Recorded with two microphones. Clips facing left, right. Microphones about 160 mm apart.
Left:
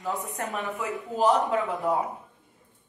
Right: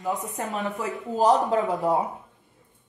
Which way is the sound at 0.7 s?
40° right (ahead or behind).